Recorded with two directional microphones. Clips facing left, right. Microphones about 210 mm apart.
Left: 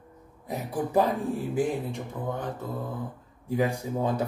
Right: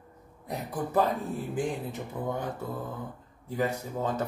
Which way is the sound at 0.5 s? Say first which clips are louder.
Left 3 dB; 10° left (ahead or behind).